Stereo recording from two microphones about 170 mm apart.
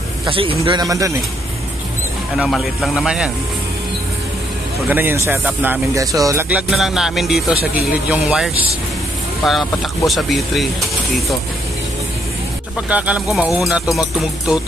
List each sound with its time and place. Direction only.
0.3 s speech: 30° right (ahead or behind)
2.3 s speech: centre (ahead or behind)
4.8 s speech: 10° right (ahead or behind)
6.5 s speech: centre (ahead or behind)
12.9 s speech: 5° right (ahead or behind)